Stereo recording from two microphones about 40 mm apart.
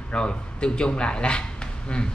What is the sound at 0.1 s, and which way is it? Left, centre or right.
Speech, left.